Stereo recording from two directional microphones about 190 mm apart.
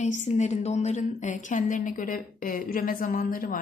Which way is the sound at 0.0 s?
40° left (ahead or behind).